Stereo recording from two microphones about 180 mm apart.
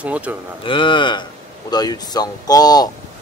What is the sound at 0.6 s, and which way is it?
Speech, 25° left (ahead or behind).